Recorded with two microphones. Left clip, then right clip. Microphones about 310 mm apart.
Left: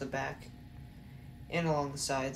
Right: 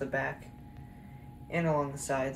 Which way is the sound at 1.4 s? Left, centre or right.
Centre.